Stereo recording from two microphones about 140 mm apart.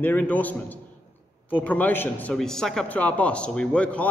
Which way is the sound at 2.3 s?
5° left (ahead or behind).